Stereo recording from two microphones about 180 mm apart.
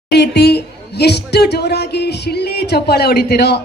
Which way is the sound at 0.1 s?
65° left (ahead or behind).